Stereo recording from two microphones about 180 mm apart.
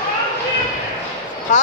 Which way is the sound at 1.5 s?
45° left (ahead or behind).